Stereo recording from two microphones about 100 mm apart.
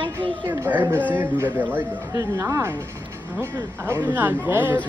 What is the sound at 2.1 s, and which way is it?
Speech, 30° right (ahead or behind).